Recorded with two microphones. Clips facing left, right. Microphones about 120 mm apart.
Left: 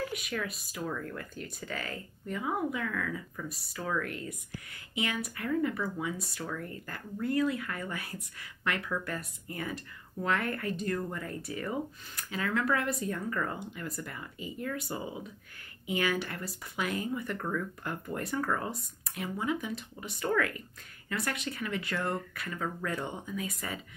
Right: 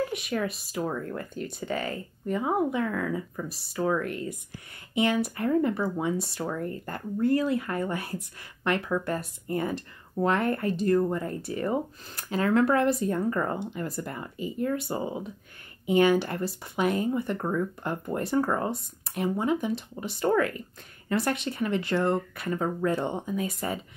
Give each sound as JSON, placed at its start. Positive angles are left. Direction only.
{"t": 0.1, "sound": "speech", "side_deg": -30}